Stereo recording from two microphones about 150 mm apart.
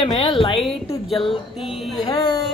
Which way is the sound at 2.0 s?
30° left (ahead or behind).